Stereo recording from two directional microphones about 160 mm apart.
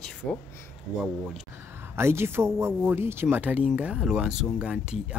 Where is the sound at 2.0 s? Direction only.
15° right (ahead or behind).